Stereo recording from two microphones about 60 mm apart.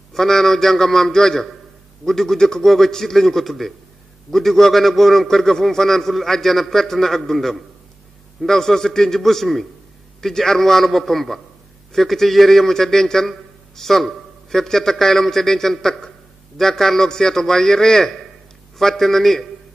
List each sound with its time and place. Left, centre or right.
0.1 s a man's voice: centre